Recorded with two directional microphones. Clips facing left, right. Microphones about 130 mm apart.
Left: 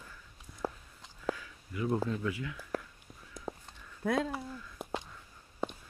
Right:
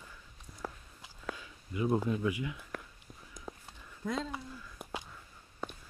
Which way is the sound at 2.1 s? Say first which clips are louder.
Right 2 dB; 15° right (ahead or behind).